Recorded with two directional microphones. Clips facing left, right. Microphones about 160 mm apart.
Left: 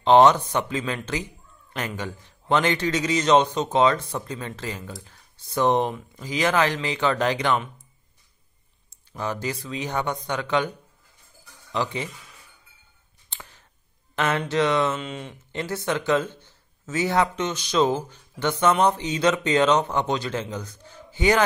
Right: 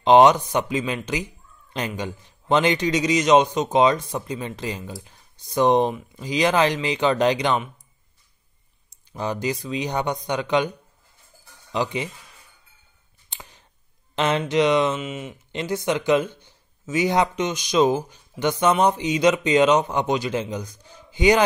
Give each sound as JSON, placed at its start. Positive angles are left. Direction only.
{"t": 0.0, "sound": "a man's voice", "side_deg": -15}
{"t": 9.1, "sound": "a man's voice", "side_deg": -15}
{"t": 11.7, "sound": "a man's voice", "side_deg": -15}
{"t": 13.3, "sound": "a sound", "side_deg": -15}
{"t": 14.1, "sound": "a man's voice", "side_deg": -20}
{"t": 15.0, "sound": "a man's voice", "side_deg": -5}